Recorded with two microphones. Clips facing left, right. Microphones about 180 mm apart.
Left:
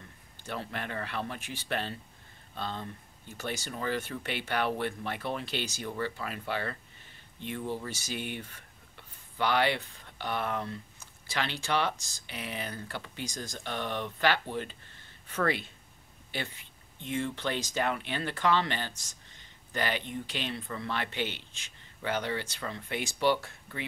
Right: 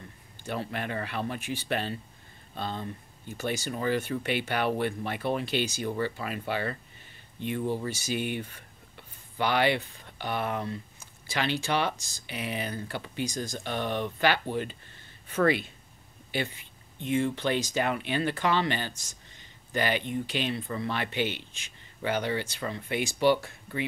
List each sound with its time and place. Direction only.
0.5 s speech: 15° right (ahead or behind)
17.0 s speech: 10° right (ahead or behind)